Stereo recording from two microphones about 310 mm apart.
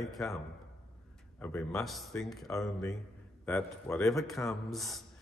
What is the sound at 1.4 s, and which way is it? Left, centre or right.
A man's voice, centre.